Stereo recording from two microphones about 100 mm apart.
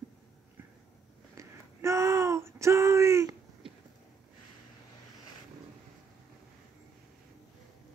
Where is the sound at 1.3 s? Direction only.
30° right (ahead or behind).